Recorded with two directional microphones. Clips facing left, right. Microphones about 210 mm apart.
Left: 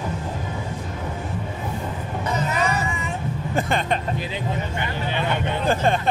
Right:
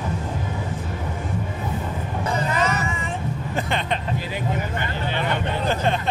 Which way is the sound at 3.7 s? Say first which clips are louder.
Left 2 dB; 45° left (ahead or behind).